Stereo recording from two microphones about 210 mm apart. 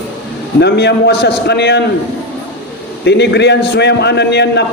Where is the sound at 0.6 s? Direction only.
55° left (ahead or behind).